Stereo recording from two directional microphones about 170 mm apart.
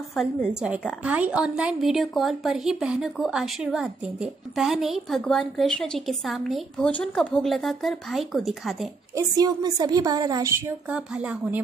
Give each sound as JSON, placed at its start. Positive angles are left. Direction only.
{"t": 0.1, "sound": "a woman's voice", "side_deg": -5}
{"t": 9.1, "sound": "a woman's voice", "side_deg": -25}
{"t": 10.9, "sound": "speech", "side_deg": -5}